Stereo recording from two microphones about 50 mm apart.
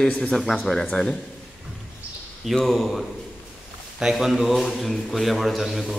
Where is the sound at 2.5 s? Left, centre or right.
Centre.